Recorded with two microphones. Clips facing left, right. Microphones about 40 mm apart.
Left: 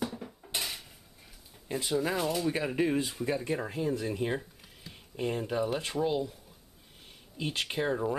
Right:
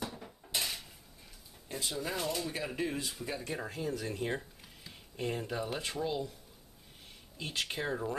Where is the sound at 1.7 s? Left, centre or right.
Centre.